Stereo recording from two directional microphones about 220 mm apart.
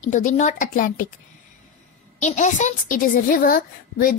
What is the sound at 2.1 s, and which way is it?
A woman's voice, 35° left (ahead or behind).